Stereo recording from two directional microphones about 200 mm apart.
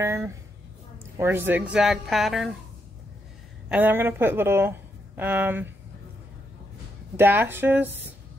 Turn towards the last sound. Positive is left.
turn(degrees=-10)  # may be behind; listen again after turning